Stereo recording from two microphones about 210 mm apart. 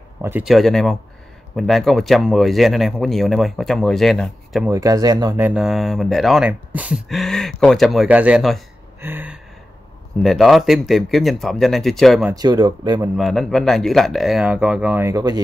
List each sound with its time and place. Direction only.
0.2 s speech: 5° right (ahead or behind)
4.6 s speech: 15° right (ahead or behind)
5.5 s speech: 5° right (ahead or behind)
12.4 s speech: 20° right (ahead or behind)
13.2 s speech: centre (ahead or behind); by 15.4 s 15° right (ahead or behind)